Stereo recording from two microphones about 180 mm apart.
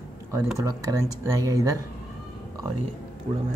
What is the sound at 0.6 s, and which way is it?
Speech, 20° right (ahead or behind).